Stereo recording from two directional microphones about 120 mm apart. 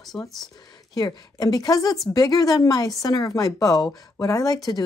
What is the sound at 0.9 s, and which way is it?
A woman's voice, 35° left (ahead or behind).